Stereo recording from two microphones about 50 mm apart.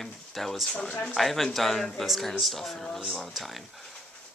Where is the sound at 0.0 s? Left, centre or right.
Centre.